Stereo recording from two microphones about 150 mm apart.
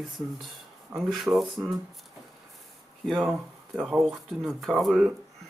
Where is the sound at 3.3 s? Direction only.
5° right (ahead or behind).